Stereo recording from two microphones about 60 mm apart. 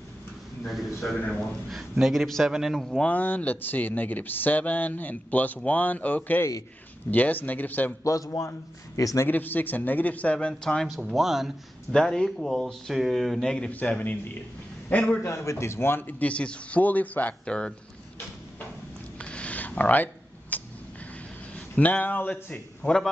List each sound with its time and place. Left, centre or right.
0.7 s a man's voice: centre
2.8 s a man's voice: centre
3.1 s speech: left
8.0 s a man's voice: left
9.3 s speech: left; by 11.0 s centre
11.0 s a man's voice: centre
11.9 s a man's voice: centre
13.7 s a man's voice: left
15.2 s speech: left
17.5 s speech: centre
19.1 s a sound: left
21.5 s speech: left